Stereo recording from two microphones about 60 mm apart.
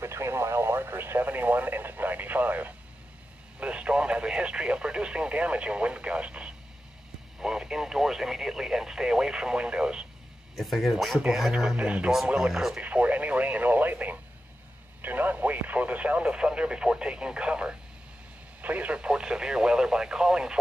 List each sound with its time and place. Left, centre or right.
0.0 s radio: right; by 6.5 s centre
7.3 s speech: centre
10.5 s speech: centre; by 12.1 s right
12.4 s speech: centre
12.8 s speech: right